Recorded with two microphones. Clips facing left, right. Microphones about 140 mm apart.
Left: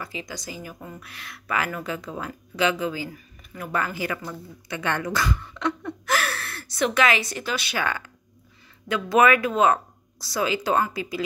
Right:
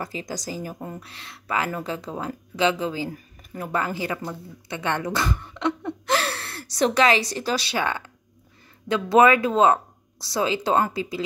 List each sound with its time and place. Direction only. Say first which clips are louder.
0.0 s speech: right 4 dB; 40° right (ahead or behind); by 5.3 s 25° right (ahead or behind)
5.4 s a sound: right 2 dB; 20° right (ahead or behind)
8.8 s speech: right 2 dB; 25° right (ahead or behind)